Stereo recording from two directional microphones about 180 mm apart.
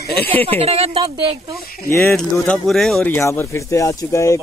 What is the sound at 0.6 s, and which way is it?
Speech, 35° right (ahead or behind).